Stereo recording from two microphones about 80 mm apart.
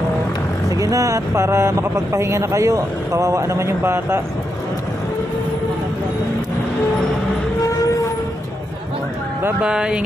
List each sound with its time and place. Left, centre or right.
0.7 s speech: right
9.6 s speech: centre